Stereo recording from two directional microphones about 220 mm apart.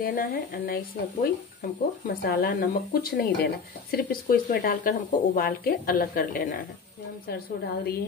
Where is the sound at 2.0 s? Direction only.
40° left (ahead or behind).